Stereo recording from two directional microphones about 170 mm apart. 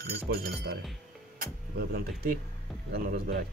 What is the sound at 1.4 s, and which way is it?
Music, 60° right (ahead or behind).